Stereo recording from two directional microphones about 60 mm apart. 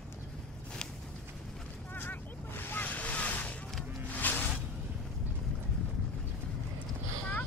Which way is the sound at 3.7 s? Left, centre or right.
Centre.